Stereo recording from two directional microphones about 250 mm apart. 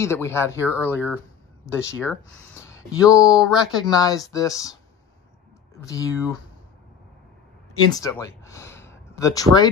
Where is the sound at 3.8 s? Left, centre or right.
Centre.